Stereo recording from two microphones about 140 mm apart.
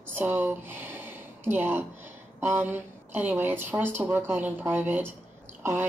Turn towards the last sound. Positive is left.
turn(degrees=-15)  # may be behind; listen again after turning